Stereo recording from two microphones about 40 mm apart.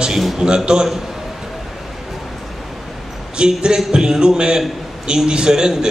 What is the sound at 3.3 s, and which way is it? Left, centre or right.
A man's voice, centre.